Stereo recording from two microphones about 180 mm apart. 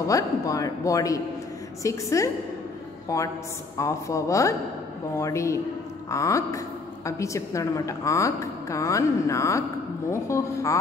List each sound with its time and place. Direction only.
0.0 s a woman's voice: 20° left (ahead or behind)